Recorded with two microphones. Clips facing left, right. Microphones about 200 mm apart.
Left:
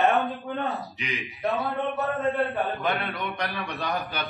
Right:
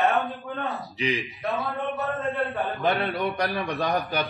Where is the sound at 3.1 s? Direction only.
45° right (ahead or behind).